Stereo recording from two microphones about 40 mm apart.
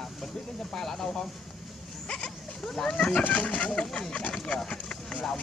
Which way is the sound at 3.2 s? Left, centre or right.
Left.